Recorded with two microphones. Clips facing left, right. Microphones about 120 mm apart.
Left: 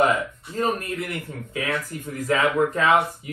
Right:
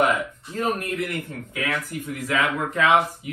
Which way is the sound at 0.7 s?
30° left (ahead or behind).